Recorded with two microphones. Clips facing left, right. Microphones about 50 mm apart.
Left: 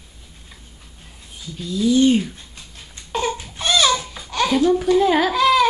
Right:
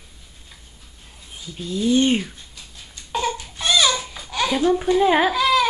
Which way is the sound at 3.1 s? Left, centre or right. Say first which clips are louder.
Left 1 dB; centre.